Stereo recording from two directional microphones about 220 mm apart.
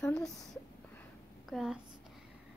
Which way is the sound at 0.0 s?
5° left (ahead or behind).